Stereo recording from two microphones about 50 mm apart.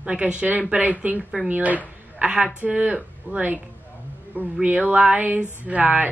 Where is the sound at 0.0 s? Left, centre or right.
Right.